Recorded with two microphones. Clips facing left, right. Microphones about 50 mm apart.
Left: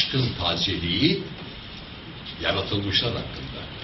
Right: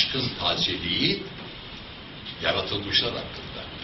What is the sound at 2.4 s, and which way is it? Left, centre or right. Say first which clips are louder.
Speech: left 1 dB; centre.